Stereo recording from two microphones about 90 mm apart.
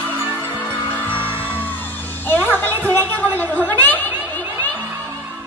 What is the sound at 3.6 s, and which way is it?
Chatter, 20° left (ahead or behind).